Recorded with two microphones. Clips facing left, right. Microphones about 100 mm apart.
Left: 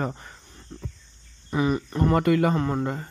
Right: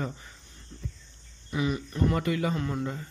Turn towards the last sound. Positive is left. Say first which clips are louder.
# left 6 dB
turn(degrees=50)  # may be behind; listen again after turning